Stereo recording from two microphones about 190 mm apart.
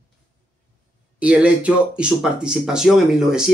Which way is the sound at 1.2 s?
5° right (ahead or behind).